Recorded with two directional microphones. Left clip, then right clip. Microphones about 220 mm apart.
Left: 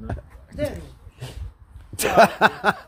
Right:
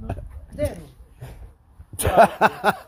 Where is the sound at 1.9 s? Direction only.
Centre (ahead or behind).